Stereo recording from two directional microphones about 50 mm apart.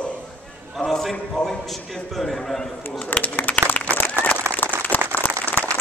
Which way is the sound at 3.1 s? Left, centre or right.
Left.